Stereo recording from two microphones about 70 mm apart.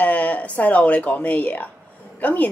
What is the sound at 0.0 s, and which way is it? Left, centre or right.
A woman's voice, left.